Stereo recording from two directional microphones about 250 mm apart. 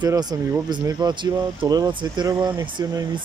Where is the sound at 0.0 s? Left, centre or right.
Centre.